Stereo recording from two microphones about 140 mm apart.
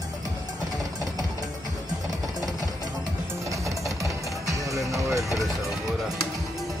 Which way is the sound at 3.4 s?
20° right (ahead or behind).